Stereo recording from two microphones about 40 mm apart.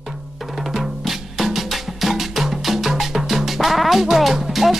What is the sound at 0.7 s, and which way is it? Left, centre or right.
Music, centre.